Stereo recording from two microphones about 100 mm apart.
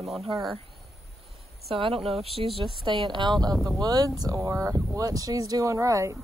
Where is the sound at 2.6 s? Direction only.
55° right (ahead or behind); by 6.1 s 30° right (ahead or behind).